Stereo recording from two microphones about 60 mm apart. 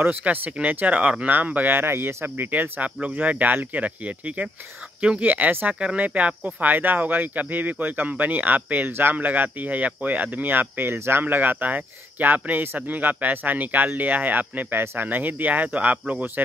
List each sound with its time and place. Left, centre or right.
0.0 s speech: right
5.3 s speech: right